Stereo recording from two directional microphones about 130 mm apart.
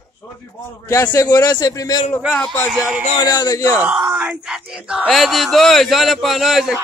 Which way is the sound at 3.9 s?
5° right (ahead or behind).